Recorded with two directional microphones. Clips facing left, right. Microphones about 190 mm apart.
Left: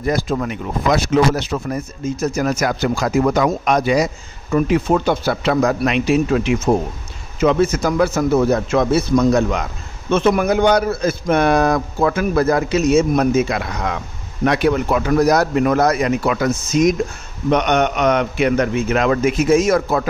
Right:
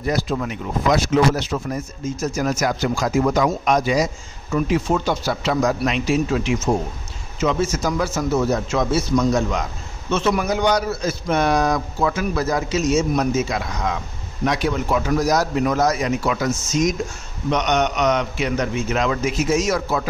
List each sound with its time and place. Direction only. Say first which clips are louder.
0.0 s speech: left 3 dB; 50° left (ahead or behind)